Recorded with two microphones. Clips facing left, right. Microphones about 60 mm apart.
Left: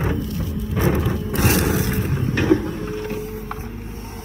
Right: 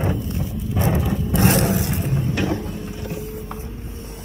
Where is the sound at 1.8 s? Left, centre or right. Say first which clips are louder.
Left 1 dB; left.